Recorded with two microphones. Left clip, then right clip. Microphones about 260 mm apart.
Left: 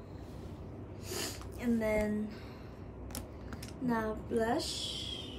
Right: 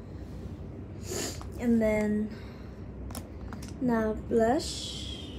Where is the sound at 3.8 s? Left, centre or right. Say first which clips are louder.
Right 6 dB; centre.